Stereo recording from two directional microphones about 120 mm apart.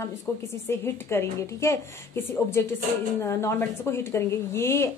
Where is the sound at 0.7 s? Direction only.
20° left (ahead or behind).